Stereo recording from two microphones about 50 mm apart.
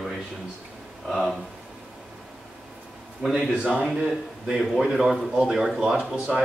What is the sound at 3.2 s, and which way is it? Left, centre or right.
Speech, centre.